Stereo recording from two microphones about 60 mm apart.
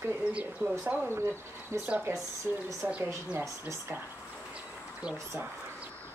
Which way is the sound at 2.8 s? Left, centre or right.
Right.